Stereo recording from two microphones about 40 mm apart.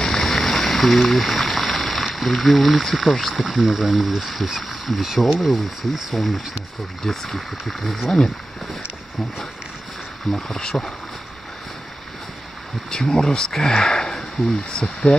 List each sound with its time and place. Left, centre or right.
0.0 s a sound: centre
3.3 s speech: centre
10.3 s speech: centre
12.9 s speech: centre